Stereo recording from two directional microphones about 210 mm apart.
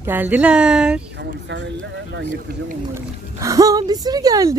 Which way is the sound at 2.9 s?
15° right (ahead or behind).